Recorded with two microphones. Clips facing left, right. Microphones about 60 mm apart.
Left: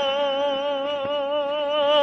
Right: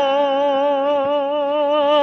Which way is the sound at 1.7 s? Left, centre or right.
Right.